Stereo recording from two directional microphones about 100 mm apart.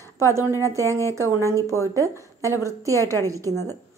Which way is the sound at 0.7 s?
30° right (ahead or behind).